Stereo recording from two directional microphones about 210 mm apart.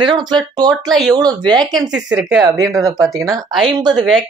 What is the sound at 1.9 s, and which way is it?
Speech, 5° right (ahead or behind).